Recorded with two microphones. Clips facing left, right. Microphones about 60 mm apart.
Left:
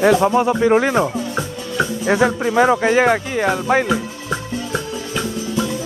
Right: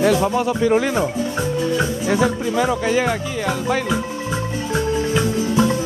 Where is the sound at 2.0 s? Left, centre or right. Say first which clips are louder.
Left 5 dB; left.